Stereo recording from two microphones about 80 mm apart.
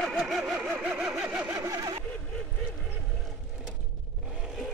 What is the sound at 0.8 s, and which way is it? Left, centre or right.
Vehicle, centre.